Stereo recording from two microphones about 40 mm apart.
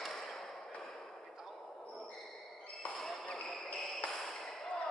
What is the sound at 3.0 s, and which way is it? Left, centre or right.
Music, centre.